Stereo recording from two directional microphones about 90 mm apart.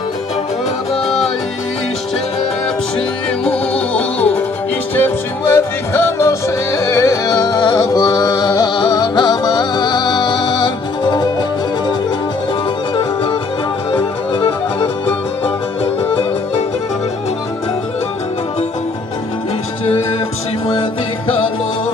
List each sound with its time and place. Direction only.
1.0 s music: 5° left (ahead or behind)
3.4 s music: 15° left (ahead or behind); by 11.2 s 55° left (ahead or behind)
13.9 s music: 65° left (ahead or behind)
15.4 s music: 80° left